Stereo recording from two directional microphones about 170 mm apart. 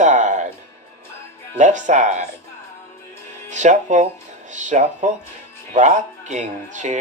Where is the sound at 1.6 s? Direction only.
45° right (ahead or behind).